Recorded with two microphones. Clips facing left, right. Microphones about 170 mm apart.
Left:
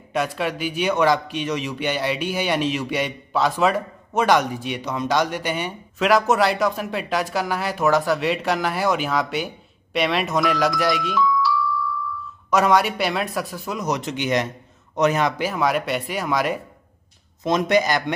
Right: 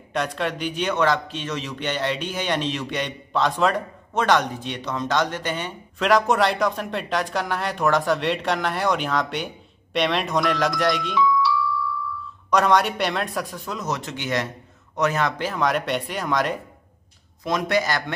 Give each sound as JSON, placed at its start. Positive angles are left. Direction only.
{"t": 0.1, "sound": "a man's voice", "side_deg": 5}
{"t": 17.4, "sound": "speech", "side_deg": 20}